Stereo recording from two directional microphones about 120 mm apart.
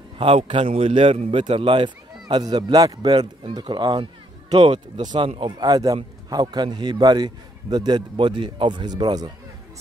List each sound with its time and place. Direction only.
0.2 s a man's voice: 50° right (ahead or behind)